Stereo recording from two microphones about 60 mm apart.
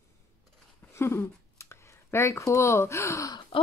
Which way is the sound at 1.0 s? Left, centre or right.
Left.